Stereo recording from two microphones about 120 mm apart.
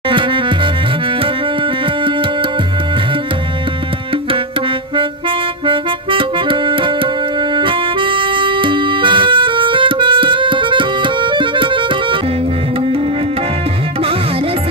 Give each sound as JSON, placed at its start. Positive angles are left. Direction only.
{"t": 0.1, "sound": "music", "side_deg": -45}
{"t": 5.7, "sound": "music", "side_deg": -45}